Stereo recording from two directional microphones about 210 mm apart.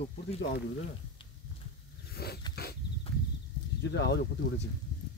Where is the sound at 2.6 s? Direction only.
50° left (ahead or behind).